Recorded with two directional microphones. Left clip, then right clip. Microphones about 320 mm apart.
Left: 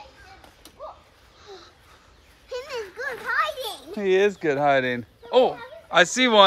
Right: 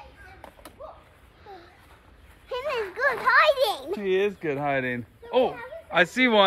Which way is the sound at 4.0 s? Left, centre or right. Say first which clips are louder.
Left 7 dB; centre.